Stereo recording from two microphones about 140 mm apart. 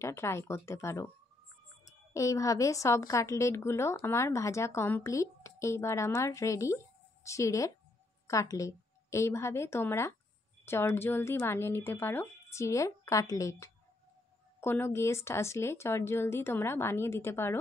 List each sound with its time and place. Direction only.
0.0 s a woman's voice: 20° left (ahead or behind)